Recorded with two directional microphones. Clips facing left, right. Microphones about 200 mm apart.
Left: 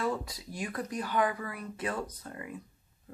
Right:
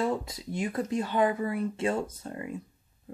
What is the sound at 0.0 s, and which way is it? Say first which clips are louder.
Speech: right 4 dB; 25° right (ahead or behind).